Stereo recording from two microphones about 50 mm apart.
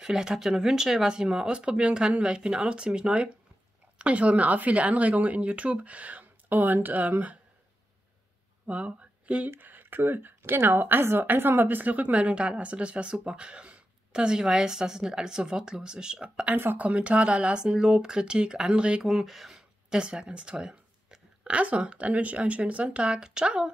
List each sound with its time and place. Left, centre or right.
0.0 s speech: centre; by 7.3 s right
8.6 s speech: right
9.6 s a woman's voice: right; by 19.0 s centre
19.0 s a sound: centre
20.0 s speech: centre
21.5 s a woman's voice: right